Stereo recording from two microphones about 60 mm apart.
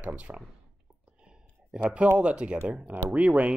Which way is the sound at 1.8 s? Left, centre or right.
Right.